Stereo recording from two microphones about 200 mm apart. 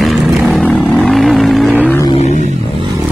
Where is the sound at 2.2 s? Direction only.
35° left (ahead or behind).